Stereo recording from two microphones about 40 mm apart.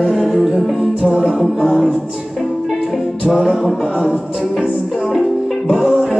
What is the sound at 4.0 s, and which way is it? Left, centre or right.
Music, right.